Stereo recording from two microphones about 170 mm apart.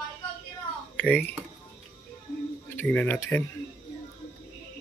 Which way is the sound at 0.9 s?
10° left (ahead or behind).